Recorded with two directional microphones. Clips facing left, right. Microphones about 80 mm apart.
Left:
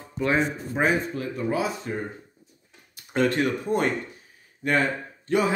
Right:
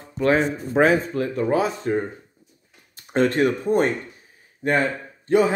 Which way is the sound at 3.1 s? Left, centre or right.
Right.